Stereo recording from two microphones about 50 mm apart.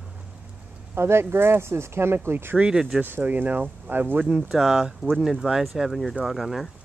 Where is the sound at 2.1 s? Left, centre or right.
Right.